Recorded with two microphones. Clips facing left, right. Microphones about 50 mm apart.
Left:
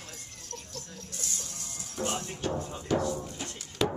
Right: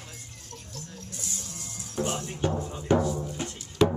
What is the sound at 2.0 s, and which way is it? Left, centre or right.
Music, right.